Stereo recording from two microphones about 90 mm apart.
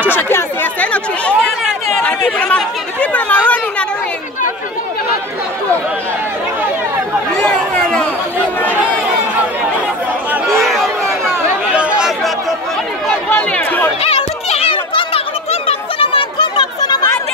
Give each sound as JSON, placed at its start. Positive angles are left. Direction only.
{"t": 0.1, "sound": "chatter", "side_deg": 25}
{"t": 0.7, "sound": "speech", "side_deg": 15}
{"t": 7.4, "sound": "a sound", "side_deg": 10}
{"t": 10.4, "sound": "chatter", "side_deg": 0}
{"t": 11.7, "sound": "chatter", "side_deg": -15}
{"t": 13.3, "sound": "speech", "side_deg": 20}
{"t": 14.0, "sound": "music", "side_deg": 90}
{"t": 16.3, "sound": "chatter", "side_deg": 50}